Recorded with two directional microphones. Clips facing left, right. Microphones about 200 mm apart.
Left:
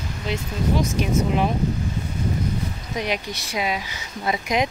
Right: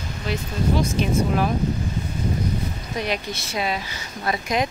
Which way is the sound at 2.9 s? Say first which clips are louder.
Even; 15° left (ahead or behind).